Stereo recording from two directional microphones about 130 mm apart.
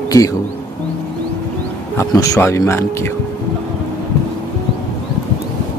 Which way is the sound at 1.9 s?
25° left (ahead or behind).